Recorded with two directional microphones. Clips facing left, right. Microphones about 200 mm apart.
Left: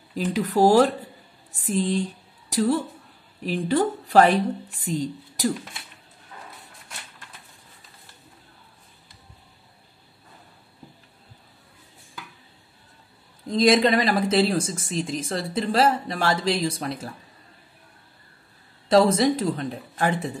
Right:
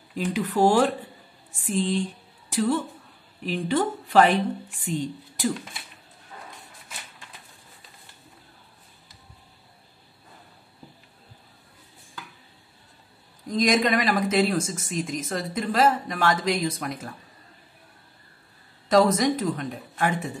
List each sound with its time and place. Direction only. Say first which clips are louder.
0.1 s a woman's voice: left 2 dB; 40° left (ahead or behind)
13.5 s speech: left 4 dB; 30° left (ahead or behind)
18.9 s speech: left 2 dB; 30° left (ahead or behind)